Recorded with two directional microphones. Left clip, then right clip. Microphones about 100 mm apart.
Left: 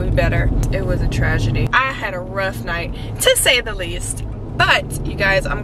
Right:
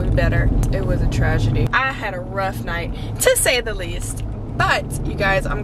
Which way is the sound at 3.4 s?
5° left (ahead or behind).